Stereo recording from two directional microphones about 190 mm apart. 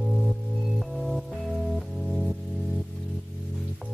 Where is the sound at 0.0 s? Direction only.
Centre (ahead or behind).